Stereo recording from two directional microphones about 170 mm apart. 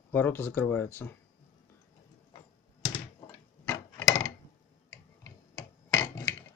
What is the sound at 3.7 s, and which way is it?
Wood, 20° left (ahead or behind).